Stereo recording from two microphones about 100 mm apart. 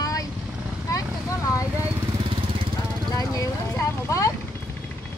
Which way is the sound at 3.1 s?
35° left (ahead or behind).